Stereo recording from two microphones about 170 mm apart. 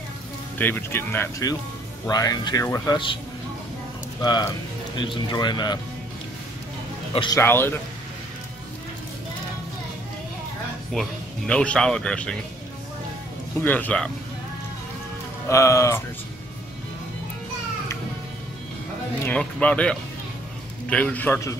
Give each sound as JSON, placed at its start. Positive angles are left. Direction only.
{"t": 0.6, "sound": "speech", "side_deg": 10}
{"t": 4.2, "sound": "speech", "side_deg": 25}
{"t": 7.3, "sound": "speech", "side_deg": 15}
{"t": 10.9, "sound": "speech", "side_deg": 5}
{"t": 13.6, "sound": "speech", "side_deg": 10}
{"t": 15.4, "sound": "speech", "side_deg": 15}
{"t": 19.2, "sound": "speech", "side_deg": 5}